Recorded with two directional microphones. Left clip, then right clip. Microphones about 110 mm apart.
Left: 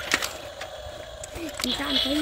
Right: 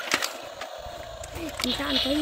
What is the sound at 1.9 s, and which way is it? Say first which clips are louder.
Speech: left 1 dB; 30° right (ahead or behind).